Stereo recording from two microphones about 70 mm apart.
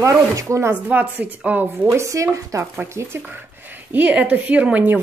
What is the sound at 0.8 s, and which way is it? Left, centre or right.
Speech, right.